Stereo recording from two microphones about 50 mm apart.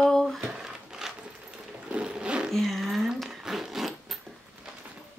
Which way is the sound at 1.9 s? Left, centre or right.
Right.